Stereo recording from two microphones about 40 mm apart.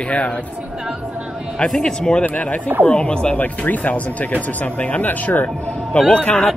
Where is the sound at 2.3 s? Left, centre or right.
Left.